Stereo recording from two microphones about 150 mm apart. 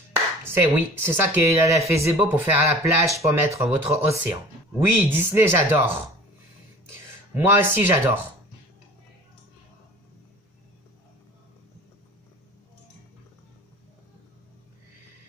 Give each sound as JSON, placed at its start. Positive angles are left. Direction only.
{"t": 0.5, "sound": "speech", "side_deg": -15}
{"t": 7.3, "sound": "speech", "side_deg": -15}